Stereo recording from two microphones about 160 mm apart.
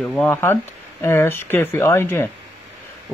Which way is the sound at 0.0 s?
10° left (ahead or behind).